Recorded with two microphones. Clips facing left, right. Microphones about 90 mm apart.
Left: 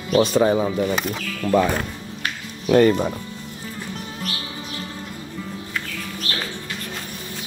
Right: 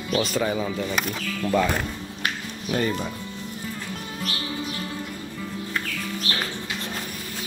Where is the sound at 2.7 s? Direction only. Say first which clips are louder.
Left 10 dB; 70° left (ahead or behind).